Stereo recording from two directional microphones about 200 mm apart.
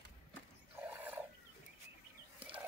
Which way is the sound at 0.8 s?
10° right (ahead or behind).